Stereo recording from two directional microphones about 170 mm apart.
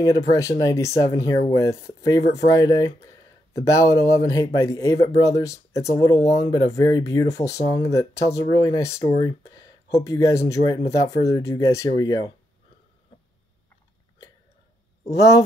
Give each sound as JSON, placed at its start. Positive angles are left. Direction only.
{"t": 0.0, "sound": "speech", "side_deg": 20}
{"t": 15.0, "sound": "speech", "side_deg": 20}